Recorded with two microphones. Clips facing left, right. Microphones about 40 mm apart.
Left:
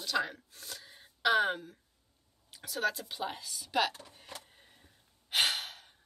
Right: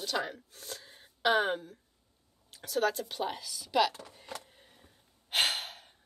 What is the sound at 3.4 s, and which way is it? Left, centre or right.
Speech, centre.